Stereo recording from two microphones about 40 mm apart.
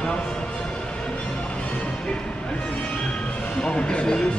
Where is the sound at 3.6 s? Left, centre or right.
Left.